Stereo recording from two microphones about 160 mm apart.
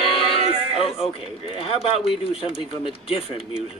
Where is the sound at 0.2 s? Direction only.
35° left (ahead or behind).